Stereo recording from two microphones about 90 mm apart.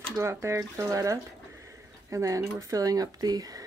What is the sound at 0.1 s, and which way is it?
Speech, 30° right (ahead or behind).